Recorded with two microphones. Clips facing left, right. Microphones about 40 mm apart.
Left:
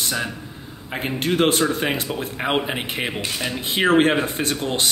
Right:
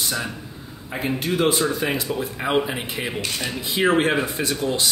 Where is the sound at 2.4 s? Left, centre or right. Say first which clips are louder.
Even; left.